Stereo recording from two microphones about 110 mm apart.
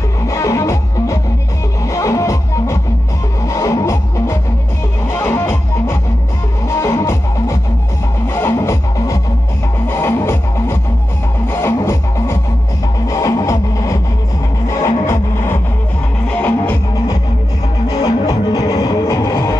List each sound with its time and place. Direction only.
0.3 s music: 30° left (ahead or behind)
17.8 s music: 35° left (ahead or behind)